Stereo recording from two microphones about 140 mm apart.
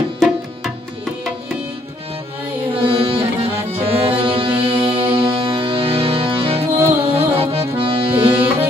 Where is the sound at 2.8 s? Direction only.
40° right (ahead or behind).